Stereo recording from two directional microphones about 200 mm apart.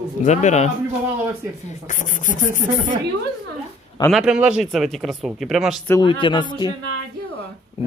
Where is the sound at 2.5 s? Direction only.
40° right (ahead or behind).